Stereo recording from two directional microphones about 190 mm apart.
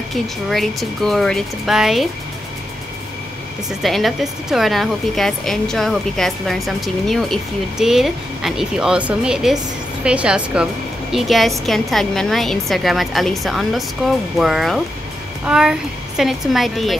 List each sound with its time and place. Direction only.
0.1 s a woman's voice: centre (ahead or behind)
3.8 s a woman's voice: centre (ahead or behind)